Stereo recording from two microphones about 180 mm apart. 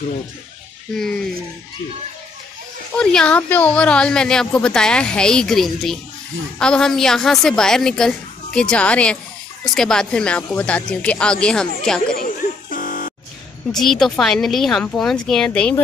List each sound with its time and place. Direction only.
3.0 s speech: 5° left (ahead or behind)
12.1 s a sound: 55° left (ahead or behind)
13.7 s speech: centre (ahead or behind)